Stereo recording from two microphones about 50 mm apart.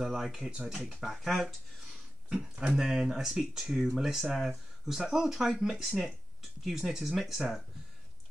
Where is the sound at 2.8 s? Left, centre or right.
Centre.